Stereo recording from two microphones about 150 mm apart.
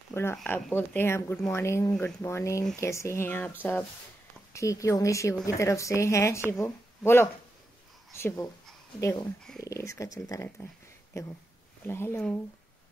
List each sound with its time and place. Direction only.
0.1 s speech: 15° left (ahead or behind)
4.6 s a woman's voice: 20° left (ahead or behind)